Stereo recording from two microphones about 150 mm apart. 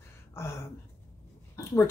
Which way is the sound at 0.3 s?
15° left (ahead or behind).